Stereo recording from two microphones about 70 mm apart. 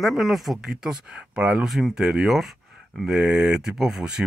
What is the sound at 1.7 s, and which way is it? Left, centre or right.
Speech, centre.